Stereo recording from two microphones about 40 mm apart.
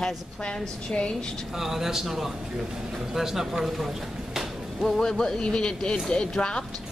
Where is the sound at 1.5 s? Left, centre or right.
Centre.